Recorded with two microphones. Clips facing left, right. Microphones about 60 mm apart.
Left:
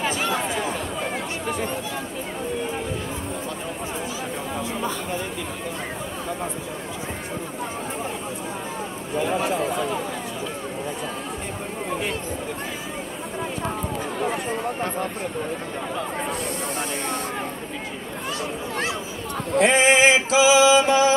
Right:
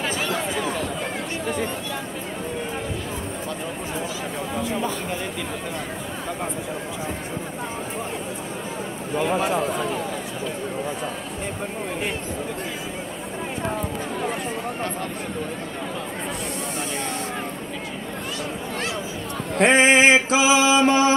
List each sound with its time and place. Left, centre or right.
0.0 s chatter: centre
19.6 s male singing: right